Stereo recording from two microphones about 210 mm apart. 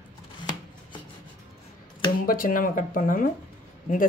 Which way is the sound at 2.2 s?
45° left (ahead or behind).